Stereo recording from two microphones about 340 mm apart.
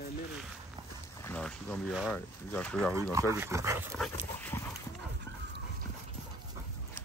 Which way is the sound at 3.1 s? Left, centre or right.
Centre.